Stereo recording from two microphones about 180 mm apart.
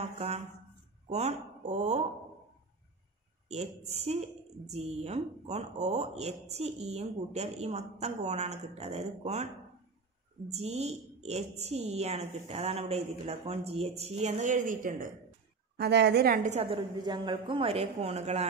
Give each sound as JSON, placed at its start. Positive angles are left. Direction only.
{"t": 1.0, "sound": "speech", "side_deg": -35}
{"t": 3.4, "sound": "speech", "side_deg": -35}
{"t": 10.5, "sound": "speech", "side_deg": -35}
{"t": 15.8, "sound": "a woman's voice", "side_deg": -70}
{"t": 16.4, "sound": "speech", "side_deg": -35}